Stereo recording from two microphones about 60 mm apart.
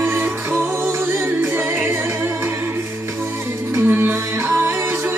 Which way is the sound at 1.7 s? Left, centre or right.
Right.